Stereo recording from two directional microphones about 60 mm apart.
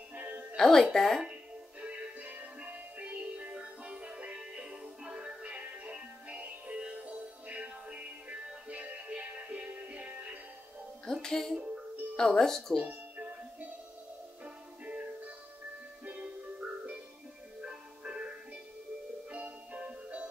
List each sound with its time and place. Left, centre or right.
0.1 s music: right
0.6 s speech: centre
1.8 s music: right
11.1 s music: centre
11.5 s music: centre
12.2 s speech: centre
12.8 s music: right
19.3 s music: right